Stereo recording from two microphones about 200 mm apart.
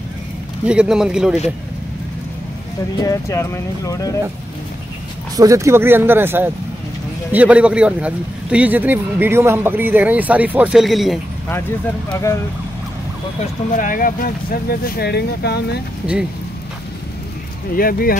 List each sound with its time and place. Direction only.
0.7 s a man's voice: 5° right (ahead or behind)
3.0 s speech: 15° left (ahead or behind)
5.3 s a man's voice: 15° right (ahead or behind); by 11.1 s centre (ahead or behind)
12.1 s speech: 15° left (ahead or behind)
13.4 s speech: 40° left (ahead or behind)
17.7 s speech: 45° left (ahead or behind)